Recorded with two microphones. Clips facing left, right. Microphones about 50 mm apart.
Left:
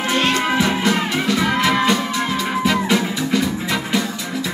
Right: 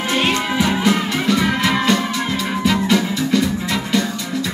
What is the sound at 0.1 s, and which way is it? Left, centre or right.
Music, centre.